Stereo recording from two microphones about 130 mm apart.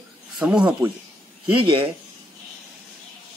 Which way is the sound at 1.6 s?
40° right (ahead or behind).